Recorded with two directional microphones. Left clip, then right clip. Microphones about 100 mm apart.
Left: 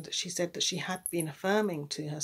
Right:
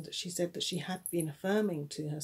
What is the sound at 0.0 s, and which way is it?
Speech, 20° right (ahead or behind).